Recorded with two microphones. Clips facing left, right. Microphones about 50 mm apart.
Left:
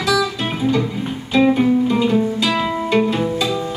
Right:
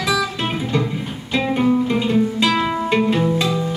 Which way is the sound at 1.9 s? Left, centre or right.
Right.